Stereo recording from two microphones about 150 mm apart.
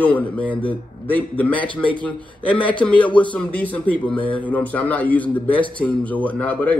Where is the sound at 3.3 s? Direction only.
10° left (ahead or behind).